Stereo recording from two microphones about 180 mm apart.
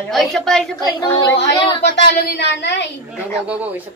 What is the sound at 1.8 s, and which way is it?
A woman's voice, 70° left (ahead or behind).